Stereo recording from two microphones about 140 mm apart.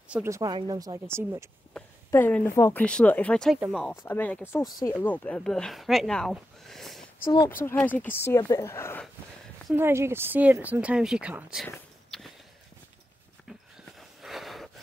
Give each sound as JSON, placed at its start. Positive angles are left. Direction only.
{"t": 0.1, "sound": "speech", "side_deg": -20}
{"t": 0.5, "sound": "speech", "side_deg": -30}
{"t": 2.0, "sound": "speech", "side_deg": 15}
{"t": 4.0, "sound": "speech", "side_deg": 15}
{"t": 4.9, "sound": "speech", "side_deg": 10}
{"t": 9.8, "sound": "speech", "side_deg": -15}
{"t": 12.1, "sound": "walk", "side_deg": 5}
{"t": 13.5, "sound": "a sound", "side_deg": 0}